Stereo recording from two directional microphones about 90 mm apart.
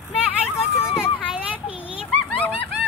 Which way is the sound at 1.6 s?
90° left.